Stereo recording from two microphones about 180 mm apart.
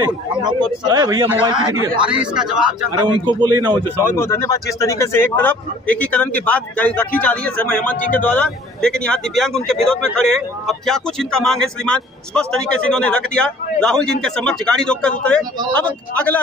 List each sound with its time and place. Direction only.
0.4 s a man's voice: 25° right (ahead or behind)
2.3 s speech: 5° right (ahead or behind)
3.0 s a man's voice: 25° right (ahead or behind)
3.9 s speech: 15° left (ahead or behind)